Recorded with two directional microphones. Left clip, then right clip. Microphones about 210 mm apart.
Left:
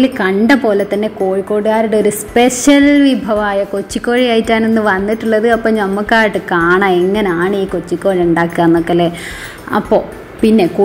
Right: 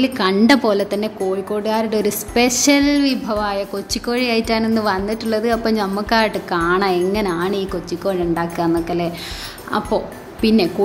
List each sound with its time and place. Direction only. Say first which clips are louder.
0.2 s a woman's voice: even; 5° right (ahead or behind)